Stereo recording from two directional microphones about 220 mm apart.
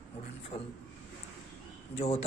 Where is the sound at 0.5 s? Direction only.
25° left (ahead or behind).